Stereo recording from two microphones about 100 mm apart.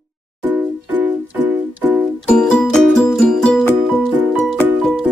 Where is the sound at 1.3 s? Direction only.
15° right (ahead or behind).